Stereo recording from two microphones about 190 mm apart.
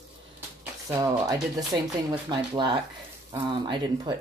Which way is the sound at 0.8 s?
20° right (ahead or behind).